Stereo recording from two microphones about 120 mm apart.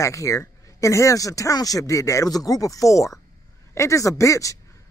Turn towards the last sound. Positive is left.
turn(degrees=25)  # may be behind; listen again after turning